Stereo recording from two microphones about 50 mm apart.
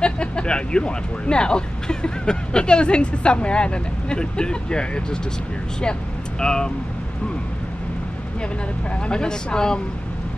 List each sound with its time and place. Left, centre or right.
0.0 s speech: centre
6.4 s speech: centre
9.0 s speech: centre